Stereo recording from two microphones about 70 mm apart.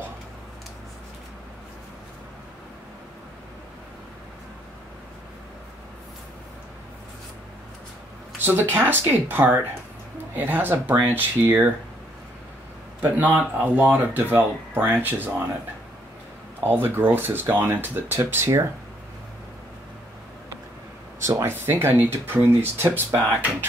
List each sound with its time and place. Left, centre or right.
8.4 s speech: right
13.2 s speech: right
16.6 s speech: right
21.5 s speech: right